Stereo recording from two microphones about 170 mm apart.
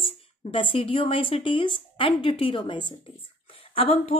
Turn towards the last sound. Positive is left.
turn(degrees=35)  # may be behind; listen again after turning